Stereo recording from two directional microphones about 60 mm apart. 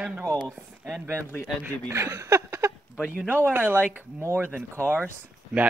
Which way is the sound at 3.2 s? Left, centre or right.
Right.